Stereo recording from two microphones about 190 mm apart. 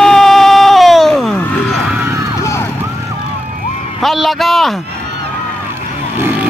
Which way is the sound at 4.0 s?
Centre (ahead or behind).